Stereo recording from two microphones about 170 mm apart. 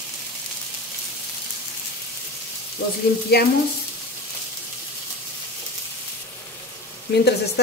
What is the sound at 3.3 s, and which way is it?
Speech, 70° left (ahead or behind).